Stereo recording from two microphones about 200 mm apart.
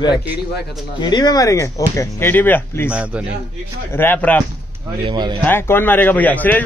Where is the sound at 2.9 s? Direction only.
5° right (ahead or behind).